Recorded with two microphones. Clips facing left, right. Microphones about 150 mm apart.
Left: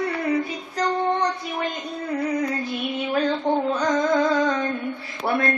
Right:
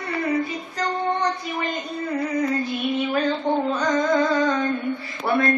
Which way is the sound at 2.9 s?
Centre (ahead or behind).